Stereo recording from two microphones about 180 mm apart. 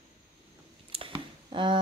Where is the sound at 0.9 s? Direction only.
30° right (ahead or behind).